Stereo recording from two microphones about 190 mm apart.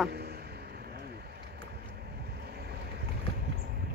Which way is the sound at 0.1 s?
60° right (ahead or behind).